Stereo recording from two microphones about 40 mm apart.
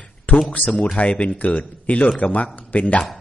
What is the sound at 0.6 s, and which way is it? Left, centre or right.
Speech, left.